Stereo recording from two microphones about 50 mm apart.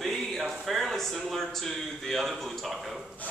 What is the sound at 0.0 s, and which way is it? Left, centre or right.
Speech, centre.